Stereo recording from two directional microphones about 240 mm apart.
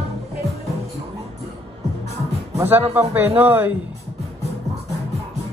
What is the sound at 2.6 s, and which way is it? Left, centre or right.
A man's voice, centre.